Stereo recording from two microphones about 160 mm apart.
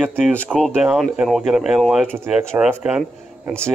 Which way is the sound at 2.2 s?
15° right (ahead or behind).